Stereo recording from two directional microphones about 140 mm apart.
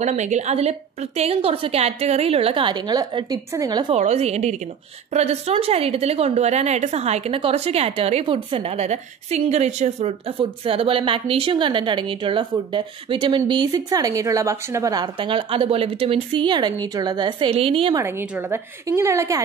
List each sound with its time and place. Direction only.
0.0 s a woman's voice: 55° right (ahead or behind); by 3.9 s 30° right (ahead or behind)
3.9 s a woman's voice: 50° right (ahead or behind)
10.4 s a woman's voice: 40° right (ahead or behind); by 15.0 s 25° right (ahead or behind)
15.1 s a woman's voice: 35° right (ahead or behind)
18.9 s a woman's voice: 20° right (ahead or behind)